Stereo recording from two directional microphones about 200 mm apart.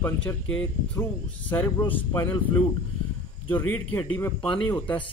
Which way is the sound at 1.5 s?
10° left (ahead or behind).